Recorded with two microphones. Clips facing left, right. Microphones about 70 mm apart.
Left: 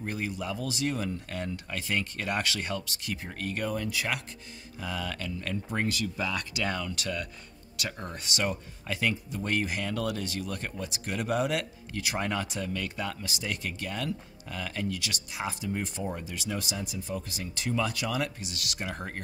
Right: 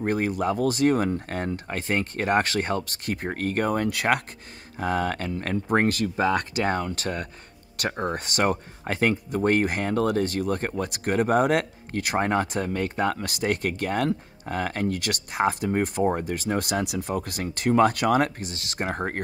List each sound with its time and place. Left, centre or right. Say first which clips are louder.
0.0 s speech: right 10 dB; right